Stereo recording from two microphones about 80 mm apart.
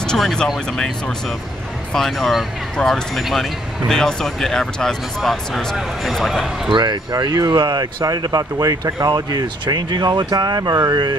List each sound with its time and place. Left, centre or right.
0.0 s speech: centre
6.7 s speech: right